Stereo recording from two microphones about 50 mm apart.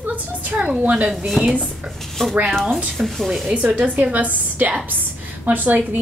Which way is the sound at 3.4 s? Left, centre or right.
Centre.